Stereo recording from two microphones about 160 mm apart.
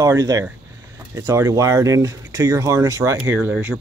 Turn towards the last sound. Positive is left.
turn(degrees=-15)  # may be behind; listen again after turning